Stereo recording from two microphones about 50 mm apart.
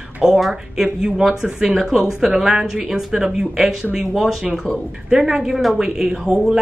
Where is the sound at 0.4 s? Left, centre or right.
Centre.